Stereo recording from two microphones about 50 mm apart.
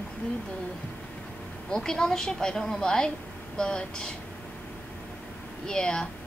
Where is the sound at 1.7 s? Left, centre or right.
Centre.